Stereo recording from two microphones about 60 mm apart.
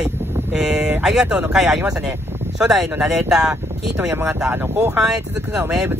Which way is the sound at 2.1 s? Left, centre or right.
Right.